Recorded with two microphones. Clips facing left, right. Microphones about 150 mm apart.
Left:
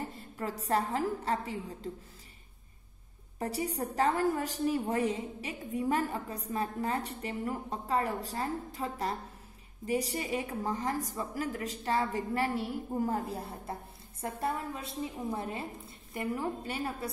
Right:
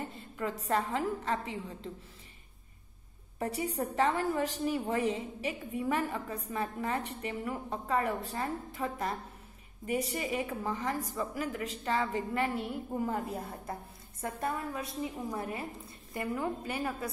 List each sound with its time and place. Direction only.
0.0 s a woman's voice: 40° left (ahead or behind)
3.3 s a woman's voice: 35° left (ahead or behind)